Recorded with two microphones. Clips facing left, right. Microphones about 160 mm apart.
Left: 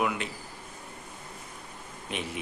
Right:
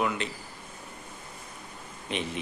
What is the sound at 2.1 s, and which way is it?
Speech, 5° left (ahead or behind).